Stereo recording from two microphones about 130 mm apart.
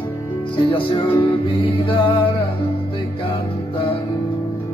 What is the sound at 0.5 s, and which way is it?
Speech, 40° left (ahead or behind).